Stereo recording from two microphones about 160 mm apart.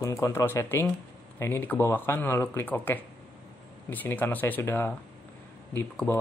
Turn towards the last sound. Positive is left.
turn(degrees=10)  # may be behind; listen again after turning